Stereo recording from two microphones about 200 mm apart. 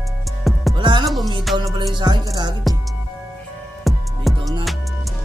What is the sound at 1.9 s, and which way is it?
Music, 20° right (ahead or behind).